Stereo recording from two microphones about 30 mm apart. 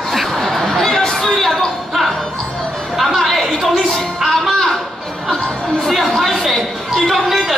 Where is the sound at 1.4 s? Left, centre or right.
Centre.